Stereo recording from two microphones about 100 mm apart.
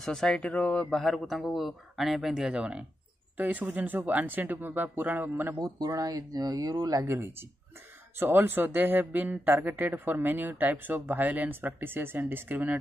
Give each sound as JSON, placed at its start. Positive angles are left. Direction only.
{"t": 0.0, "sound": "speech", "side_deg": 5}
{"t": 5.6, "sound": "a man's voice", "side_deg": -35}